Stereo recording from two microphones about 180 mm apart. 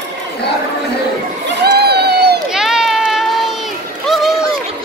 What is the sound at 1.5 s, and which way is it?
Crowd, 70° right (ahead or behind).